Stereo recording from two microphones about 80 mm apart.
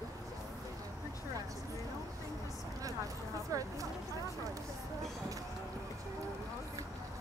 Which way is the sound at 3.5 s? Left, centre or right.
Right.